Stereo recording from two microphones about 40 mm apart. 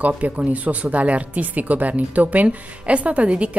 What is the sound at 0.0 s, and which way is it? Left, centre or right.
Speech, right.